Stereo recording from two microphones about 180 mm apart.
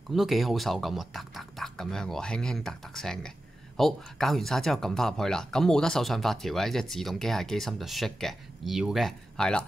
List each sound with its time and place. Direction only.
0.1 s speech: centre (ahead or behind)